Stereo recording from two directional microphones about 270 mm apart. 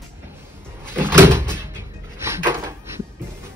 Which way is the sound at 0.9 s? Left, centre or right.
Centre.